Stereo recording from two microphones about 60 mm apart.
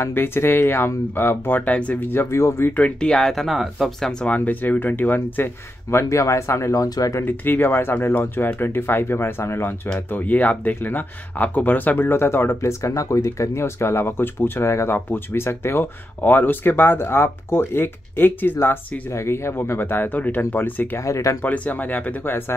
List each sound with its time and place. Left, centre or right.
0.0 s speech: left
2.0 s speech: left
2.7 s speech: left
3.1 s speech: centre
3.4 s speech: centre
4.2 s speech: left
7.2 s speech: left
9.8 s speech: left
12.8 s speech: left
13.7 s speech: left
16.2 s speech: left
19.1 s speech: left
21.0 s speech: left
21.4 s speech: left